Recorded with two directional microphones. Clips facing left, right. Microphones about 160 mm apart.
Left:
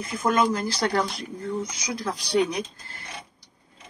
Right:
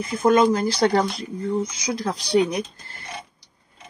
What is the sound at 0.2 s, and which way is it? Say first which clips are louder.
Speech: right 6 dB; 30° right (ahead or behind).